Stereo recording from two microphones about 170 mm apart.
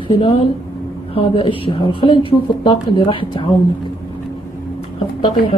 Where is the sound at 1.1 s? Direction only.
30° left (ahead or behind).